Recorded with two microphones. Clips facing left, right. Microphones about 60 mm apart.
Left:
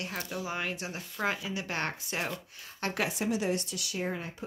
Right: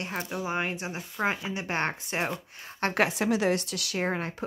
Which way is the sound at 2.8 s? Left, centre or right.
Right.